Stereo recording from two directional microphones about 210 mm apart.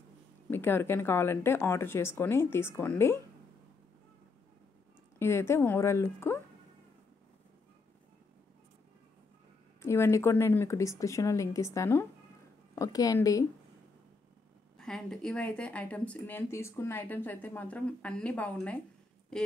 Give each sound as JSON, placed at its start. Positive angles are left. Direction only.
{"t": 0.5, "sound": "speech", "side_deg": 10}
{"t": 5.2, "sound": "speech", "side_deg": 10}
{"t": 9.8, "sound": "speech", "side_deg": 10}
{"t": 14.8, "sound": "speech", "side_deg": 0}